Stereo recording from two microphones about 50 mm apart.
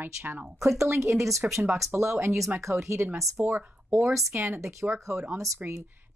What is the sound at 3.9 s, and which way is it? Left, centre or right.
Speech, right.